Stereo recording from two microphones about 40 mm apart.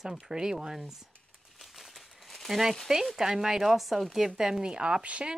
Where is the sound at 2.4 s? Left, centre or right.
Centre; by 5.3 s right.